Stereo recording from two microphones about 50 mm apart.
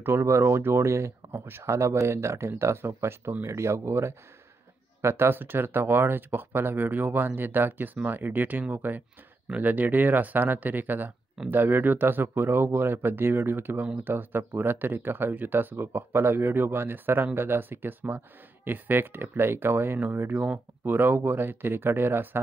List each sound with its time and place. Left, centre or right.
0.0 s speech: right
1.4 s speech: right
1.7 s speech: right
3.4 s speech: right
5.0 s speech: right